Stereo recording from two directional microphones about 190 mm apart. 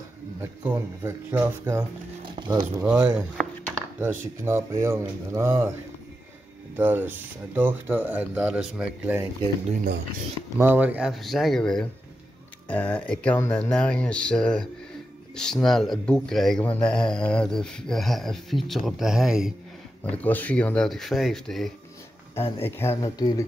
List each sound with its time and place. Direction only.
0.4 s speech: 15° right (ahead or behind)
2.2 s a sound: 25° right (ahead or behind)
2.8 s speech: 5° right (ahead or behind)
6.8 s speech: 10° right (ahead or behind)
10.6 s speech: 10° right (ahead or behind)
20.0 s speech: 10° left (ahead or behind)
22.3 s speech: 10° left (ahead or behind)